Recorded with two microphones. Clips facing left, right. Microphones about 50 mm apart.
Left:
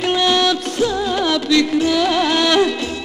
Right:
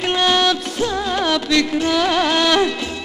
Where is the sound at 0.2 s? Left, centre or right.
Right.